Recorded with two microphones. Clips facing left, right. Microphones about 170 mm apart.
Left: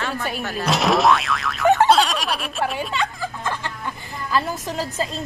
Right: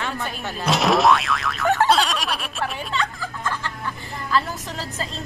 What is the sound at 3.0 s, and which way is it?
Music, 20° left (ahead or behind).